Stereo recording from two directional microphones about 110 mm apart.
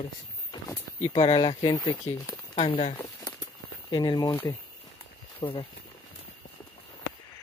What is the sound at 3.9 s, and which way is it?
Speech, 40° left (ahead or behind).